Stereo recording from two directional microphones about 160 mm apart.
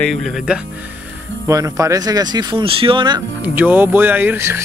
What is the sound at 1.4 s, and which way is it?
Speech, 20° right (ahead or behind).